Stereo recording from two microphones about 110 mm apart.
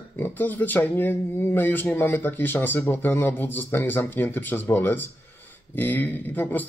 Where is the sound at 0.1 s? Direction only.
20° left (ahead or behind).